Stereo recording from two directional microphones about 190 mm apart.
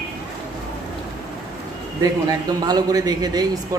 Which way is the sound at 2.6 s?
20° right (ahead or behind).